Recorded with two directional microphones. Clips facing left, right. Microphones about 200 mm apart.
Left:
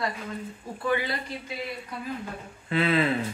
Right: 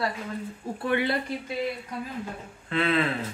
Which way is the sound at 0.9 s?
60° right (ahead or behind).